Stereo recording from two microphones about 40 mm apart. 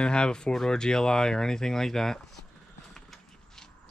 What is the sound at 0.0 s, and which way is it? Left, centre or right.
Speech, left.